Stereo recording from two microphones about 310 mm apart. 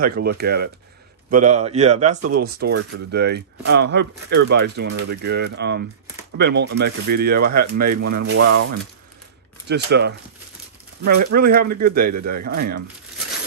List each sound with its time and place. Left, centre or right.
0.0 s speech: right
9.7 s speech: right